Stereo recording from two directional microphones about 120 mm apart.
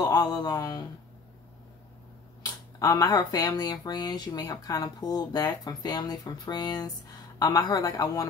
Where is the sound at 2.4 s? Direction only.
30° left (ahead or behind).